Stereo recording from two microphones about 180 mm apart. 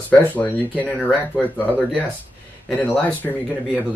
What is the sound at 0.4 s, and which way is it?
Speech, 10° left (ahead or behind).